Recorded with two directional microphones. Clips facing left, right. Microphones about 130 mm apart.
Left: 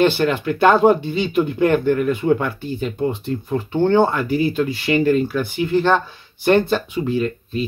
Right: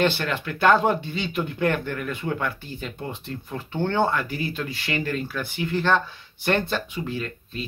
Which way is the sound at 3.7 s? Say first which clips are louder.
Left 8 dB; 25° left (ahead or behind).